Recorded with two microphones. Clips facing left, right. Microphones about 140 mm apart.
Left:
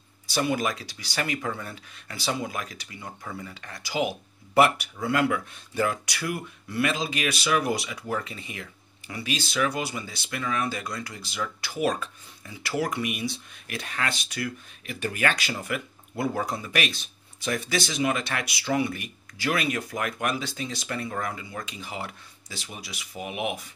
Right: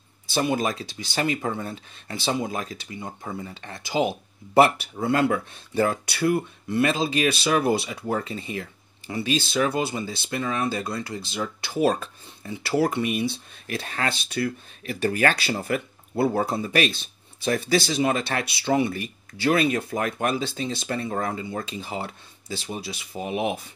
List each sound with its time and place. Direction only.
0.3 s speech: 25° right (ahead or behind)